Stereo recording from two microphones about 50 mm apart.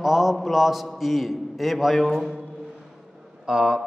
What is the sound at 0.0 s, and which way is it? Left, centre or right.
A man's voice, centre.